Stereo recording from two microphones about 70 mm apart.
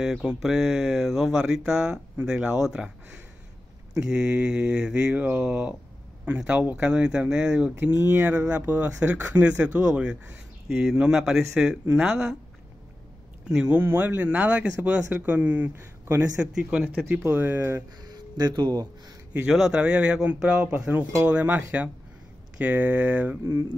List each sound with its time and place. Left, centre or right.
0.0 s speech: centre
4.1 s speech: centre
7.8 s speech: right; by 12.4 s centre
13.7 s speech: right
15.7 s speech: right
16.5 s speech: centre
17.2 s speech: right
18.0 s a sound: right
19.5 s speech: centre
20.7 s speech: right